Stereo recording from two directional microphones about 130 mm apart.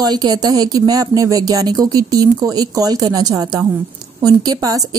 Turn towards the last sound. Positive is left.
turn(degrees=-30)  # may be behind; listen again after turning